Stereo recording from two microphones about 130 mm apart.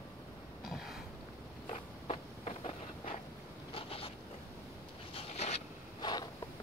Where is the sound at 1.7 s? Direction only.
55° left (ahead or behind).